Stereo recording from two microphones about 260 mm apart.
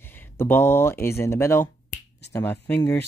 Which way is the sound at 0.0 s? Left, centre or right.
Centre.